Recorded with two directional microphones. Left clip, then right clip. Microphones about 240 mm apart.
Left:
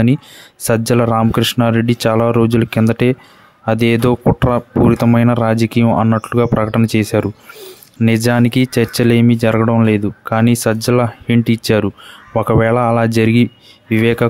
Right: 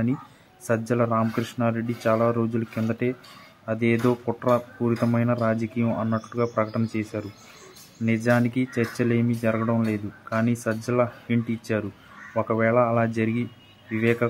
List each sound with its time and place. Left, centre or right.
0.7 s speech: left